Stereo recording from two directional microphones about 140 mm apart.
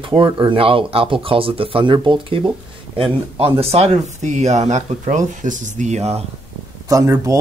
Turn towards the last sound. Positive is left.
turn(degrees=-25)  # may be behind; listen again after turning